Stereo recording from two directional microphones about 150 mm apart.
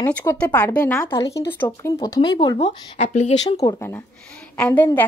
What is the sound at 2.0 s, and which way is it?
Speech, 25° left (ahead or behind).